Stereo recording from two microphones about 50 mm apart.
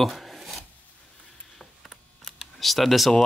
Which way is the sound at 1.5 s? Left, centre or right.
Centre.